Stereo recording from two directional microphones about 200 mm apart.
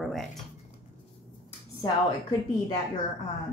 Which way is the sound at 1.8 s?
20° left (ahead or behind).